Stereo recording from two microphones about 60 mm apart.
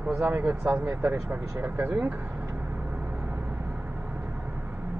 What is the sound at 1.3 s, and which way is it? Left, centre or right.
Speech, right.